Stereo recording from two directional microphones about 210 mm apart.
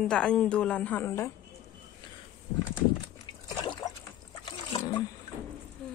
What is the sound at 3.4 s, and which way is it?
Trickle, 20° left (ahead or behind).